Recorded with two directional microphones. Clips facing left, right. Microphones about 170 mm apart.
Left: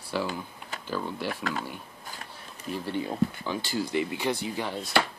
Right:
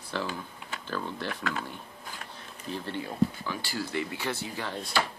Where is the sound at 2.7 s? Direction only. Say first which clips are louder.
Left 4 dB; 10° left (ahead or behind).